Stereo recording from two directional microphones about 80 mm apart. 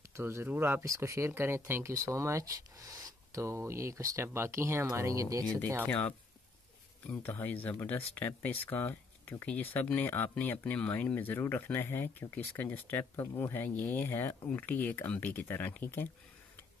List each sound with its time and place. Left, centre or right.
0.1 s speech: right
0.8 s speech: right
5.9 s speech: centre
7.2 s speech: left